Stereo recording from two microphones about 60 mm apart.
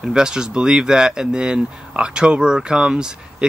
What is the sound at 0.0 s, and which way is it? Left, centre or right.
Speech, centre.